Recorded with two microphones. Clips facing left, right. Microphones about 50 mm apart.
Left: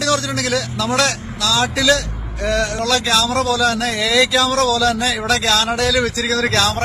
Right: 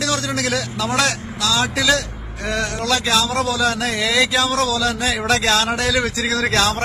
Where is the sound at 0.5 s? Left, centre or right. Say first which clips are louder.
Left 2 dB; centre.